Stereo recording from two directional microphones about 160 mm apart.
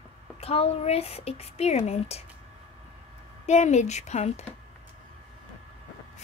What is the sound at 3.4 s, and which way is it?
A woman's voice, 45° left (ahead or behind).